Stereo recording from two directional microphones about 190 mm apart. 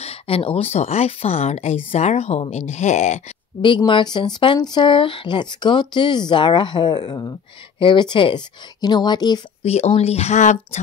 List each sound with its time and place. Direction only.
0.0 s speech: 30° left (ahead or behind)
3.6 s speech: 25° left (ahead or behind)